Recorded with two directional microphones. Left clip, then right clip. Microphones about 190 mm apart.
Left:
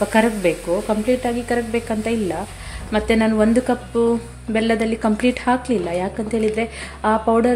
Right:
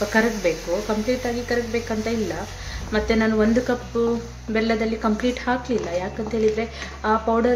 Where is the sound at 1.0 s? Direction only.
30° left (ahead or behind).